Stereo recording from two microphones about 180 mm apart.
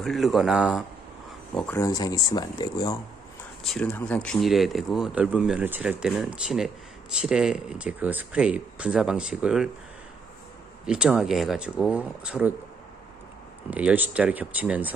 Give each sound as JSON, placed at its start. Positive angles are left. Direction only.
{"t": 0.0, "sound": "speech", "side_deg": 0}
{"t": 1.5, "sound": "speech", "side_deg": 5}
{"t": 1.8, "sound": "speech", "side_deg": 20}
{"t": 3.6, "sound": "speech", "side_deg": 5}
{"t": 10.9, "sound": "speech", "side_deg": -5}
{"t": 13.7, "sound": "speech", "side_deg": -10}